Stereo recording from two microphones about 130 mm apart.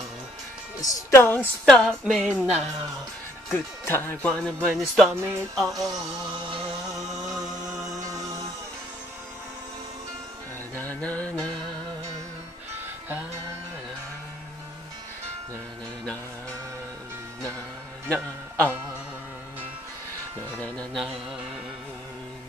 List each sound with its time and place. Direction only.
0.7 s speech: 25° left (ahead or behind)
1.2 s speech: 15° left (ahead or behind)
1.7 s music: 5° left (ahead or behind)
2.2 s speech: 5° right (ahead or behind)
3.5 s speech: 15° left (ahead or behind)
4.6 s music: centre (ahead or behind)
5.1 s speech: 15° right (ahead or behind)
5.6 s music: centre (ahead or behind)
10.7 s speech: 15° left (ahead or behind)
18.0 s music: 10° left (ahead or behind)
20.5 s music: 10° left (ahead or behind)